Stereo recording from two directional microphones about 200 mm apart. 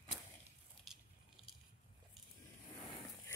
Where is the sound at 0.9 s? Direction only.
Centre (ahead or behind).